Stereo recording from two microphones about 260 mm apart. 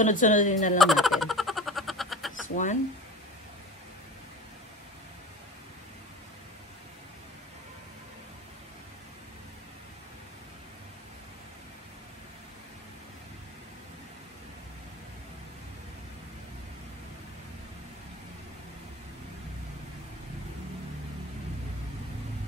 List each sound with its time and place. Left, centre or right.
0.0 s speech: left
0.7 s a sound: centre
2.4 s speech: left